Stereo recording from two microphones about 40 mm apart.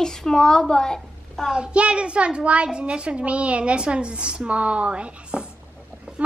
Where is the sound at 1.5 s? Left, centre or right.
Right.